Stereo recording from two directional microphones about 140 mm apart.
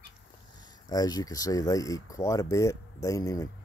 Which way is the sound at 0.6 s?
30° left (ahead or behind).